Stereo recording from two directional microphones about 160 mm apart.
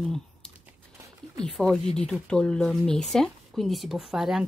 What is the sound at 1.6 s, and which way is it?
A woman's voice, 5° left (ahead or behind).